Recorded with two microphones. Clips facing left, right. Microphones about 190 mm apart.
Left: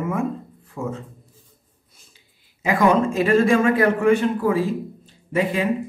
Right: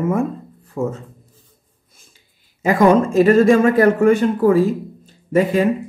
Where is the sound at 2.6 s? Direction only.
45° right (ahead or behind).